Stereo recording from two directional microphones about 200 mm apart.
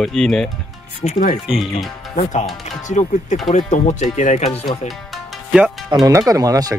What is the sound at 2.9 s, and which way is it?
Speech, 40° left (ahead or behind).